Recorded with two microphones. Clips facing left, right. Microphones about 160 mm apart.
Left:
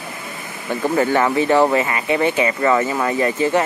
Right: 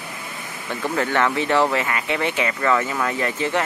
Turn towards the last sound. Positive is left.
turn(degrees=5)  # may be behind; listen again after turning